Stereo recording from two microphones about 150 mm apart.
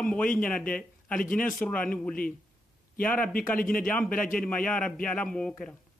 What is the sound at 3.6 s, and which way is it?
Speech, 70° left (ahead or behind).